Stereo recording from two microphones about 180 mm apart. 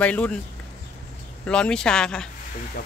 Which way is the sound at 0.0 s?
10° left (ahead or behind).